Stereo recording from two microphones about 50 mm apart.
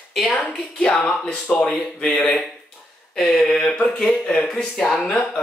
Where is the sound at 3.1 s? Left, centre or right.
Centre.